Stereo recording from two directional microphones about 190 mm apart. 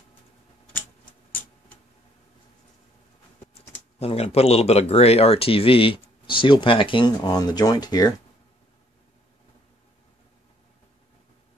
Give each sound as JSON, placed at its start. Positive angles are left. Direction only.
{"t": 4.0, "sound": "speech", "side_deg": 30}